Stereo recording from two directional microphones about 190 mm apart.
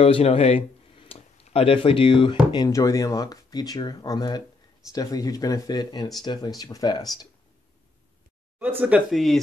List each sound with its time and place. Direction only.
0.0 s speech: 30° left (ahead or behind)
8.5 s speech: 10° right (ahead or behind)